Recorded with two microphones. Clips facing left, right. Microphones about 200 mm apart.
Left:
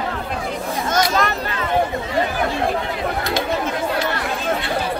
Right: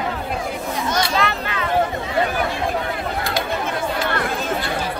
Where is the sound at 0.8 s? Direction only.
45° left (ahead or behind).